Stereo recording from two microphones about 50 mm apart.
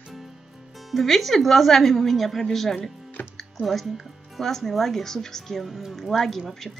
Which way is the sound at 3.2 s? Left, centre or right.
Left.